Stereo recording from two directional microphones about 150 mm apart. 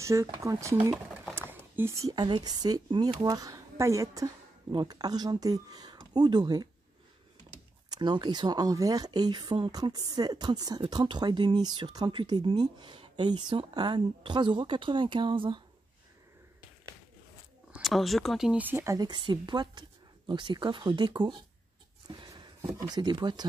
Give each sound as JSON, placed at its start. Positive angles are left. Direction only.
{"t": 0.0, "sound": "speech", "side_deg": -20}
{"t": 7.9, "sound": "speech", "side_deg": -30}
{"t": 17.7, "sound": "speech", "side_deg": 0}
{"t": 18.9, "sound": "speech", "side_deg": -30}